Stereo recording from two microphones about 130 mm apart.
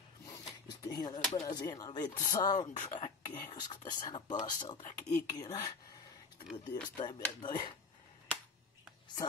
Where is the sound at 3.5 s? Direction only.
35° left (ahead or behind).